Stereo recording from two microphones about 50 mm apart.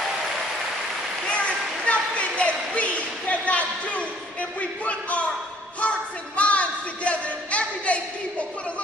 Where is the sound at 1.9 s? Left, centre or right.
Left.